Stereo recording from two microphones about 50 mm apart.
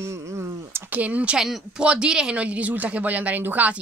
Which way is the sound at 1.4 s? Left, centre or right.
Centre.